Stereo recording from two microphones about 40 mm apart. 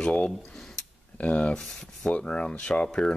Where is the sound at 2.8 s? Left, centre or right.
Centre.